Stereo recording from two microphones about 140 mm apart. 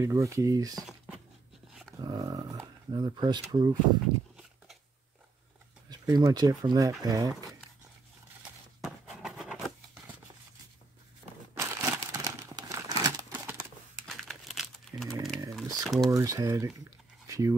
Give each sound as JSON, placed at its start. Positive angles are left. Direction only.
{"t": 0.0, "sound": "speech", "side_deg": -20}
{"t": 0.8, "sound": "a sound", "side_deg": -5}
{"t": 1.7, "sound": "dog", "side_deg": 0}
{"t": 2.0, "sound": "speech", "side_deg": -30}
{"t": 5.9, "sound": "speech", "side_deg": -30}
{"t": 8.8, "sound": "a sound", "side_deg": -5}
{"t": 11.5, "sound": "crumpling", "side_deg": -20}
{"t": 14.0, "sound": "crumpling", "side_deg": 0}
{"t": 15.5, "sound": "typing", "side_deg": 0}
{"t": 16.1, "sound": "speech", "side_deg": -25}
{"t": 17.3, "sound": "a sound", "side_deg": -25}